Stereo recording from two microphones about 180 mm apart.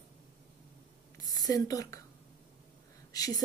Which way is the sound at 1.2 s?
20° left (ahead or behind).